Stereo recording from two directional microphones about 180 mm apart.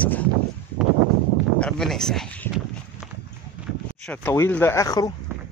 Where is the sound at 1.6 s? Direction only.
5° left (ahead or behind).